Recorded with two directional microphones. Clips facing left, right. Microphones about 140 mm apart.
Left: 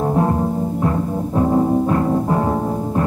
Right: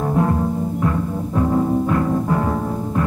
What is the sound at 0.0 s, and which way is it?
Music, 30° left (ahead or behind).